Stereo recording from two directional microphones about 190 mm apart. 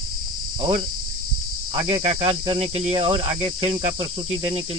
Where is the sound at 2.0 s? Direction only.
30° right (ahead or behind).